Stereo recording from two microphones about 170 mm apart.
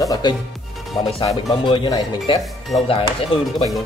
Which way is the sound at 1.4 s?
30° left (ahead or behind).